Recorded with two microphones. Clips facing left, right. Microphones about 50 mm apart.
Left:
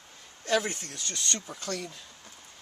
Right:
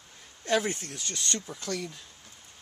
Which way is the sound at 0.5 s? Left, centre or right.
Centre.